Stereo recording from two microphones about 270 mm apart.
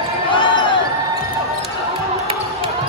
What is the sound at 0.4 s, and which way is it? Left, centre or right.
Basketball bounce, centre.